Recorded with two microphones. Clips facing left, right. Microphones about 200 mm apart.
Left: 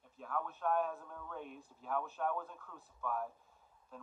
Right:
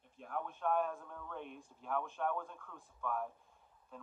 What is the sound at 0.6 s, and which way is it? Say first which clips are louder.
Speech: right 1 dB; 5° left (ahead or behind).